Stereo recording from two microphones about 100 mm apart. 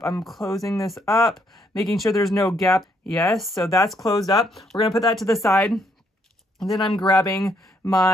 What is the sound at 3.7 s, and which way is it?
Speech, 35° left (ahead or behind).